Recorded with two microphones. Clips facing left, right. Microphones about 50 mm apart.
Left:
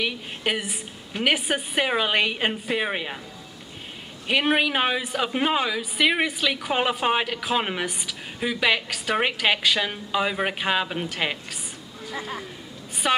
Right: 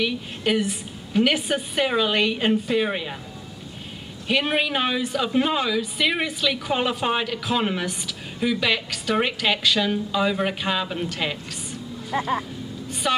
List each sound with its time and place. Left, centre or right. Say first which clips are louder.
0.0 s a woman's voice: right 2 dB; centre
4.3 s a woman's voice: left 1 dB; centre
13.0 s a woman's voice: left 1 dB; left